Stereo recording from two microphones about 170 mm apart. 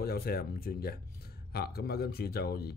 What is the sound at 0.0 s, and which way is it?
Speech, 65° left (ahead or behind).